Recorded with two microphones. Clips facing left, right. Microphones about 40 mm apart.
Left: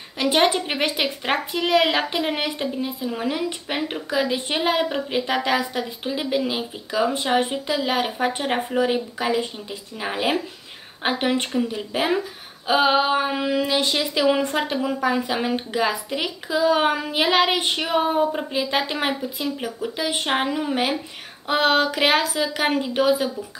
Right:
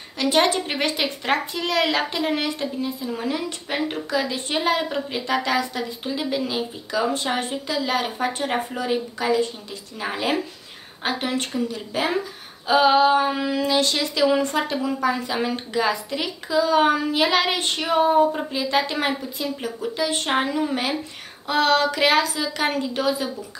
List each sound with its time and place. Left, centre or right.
0.2 s a woman's voice: centre